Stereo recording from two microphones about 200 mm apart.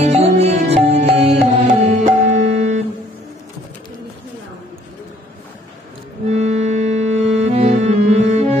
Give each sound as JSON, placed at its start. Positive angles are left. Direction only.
{"t": 0.0, "sound": "music", "side_deg": -35}
{"t": 6.3, "sound": "music", "side_deg": -35}